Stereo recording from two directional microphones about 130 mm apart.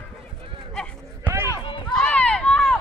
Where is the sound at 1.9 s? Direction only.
10° left (ahead or behind).